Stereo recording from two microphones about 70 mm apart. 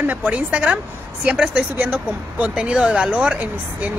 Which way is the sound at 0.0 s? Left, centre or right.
Right.